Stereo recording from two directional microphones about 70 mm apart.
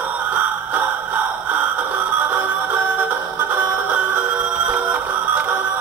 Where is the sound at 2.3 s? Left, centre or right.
Right.